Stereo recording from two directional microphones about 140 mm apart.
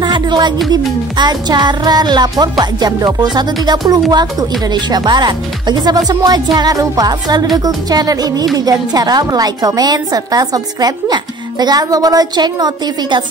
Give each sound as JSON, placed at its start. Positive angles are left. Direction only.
{"t": 0.0, "sound": "music", "side_deg": -35}
{"t": 4.1, "sound": "speech", "side_deg": -30}